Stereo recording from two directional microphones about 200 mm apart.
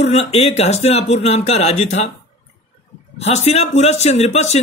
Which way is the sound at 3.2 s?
35° left (ahead or behind).